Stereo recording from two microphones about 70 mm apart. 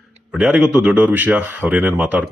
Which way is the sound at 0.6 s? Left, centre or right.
Centre.